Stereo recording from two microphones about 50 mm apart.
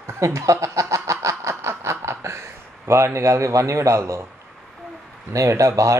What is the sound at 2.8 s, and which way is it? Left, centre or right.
A man's voice, right.